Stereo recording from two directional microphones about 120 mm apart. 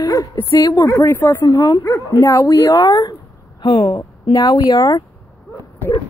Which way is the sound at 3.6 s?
40° left (ahead or behind).